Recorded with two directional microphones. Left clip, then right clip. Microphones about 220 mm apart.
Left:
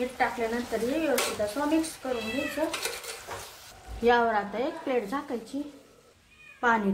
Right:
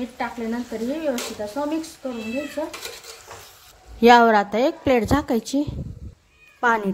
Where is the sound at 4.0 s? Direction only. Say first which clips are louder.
Right 10 dB; 45° right (ahead or behind).